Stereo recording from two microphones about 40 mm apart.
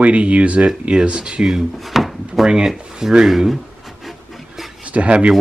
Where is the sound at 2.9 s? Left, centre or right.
Centre.